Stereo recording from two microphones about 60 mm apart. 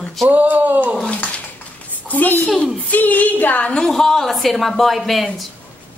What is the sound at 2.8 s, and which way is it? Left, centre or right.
Music, left.